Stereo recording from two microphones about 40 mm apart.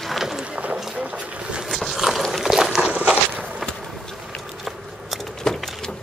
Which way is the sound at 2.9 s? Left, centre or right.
Right.